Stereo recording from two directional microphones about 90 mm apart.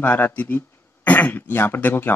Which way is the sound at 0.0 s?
20° left (ahead or behind).